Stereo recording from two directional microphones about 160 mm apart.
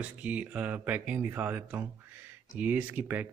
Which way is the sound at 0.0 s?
10° right (ahead or behind).